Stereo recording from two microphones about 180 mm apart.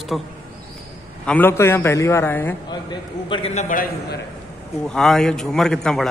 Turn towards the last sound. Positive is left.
turn(degrees=5)  # may be behind; listen again after turning